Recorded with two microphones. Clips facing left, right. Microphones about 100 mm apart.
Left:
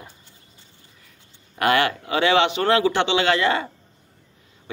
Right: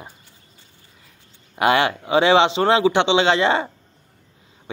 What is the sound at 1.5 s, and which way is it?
A man's voice, 20° right (ahead or behind).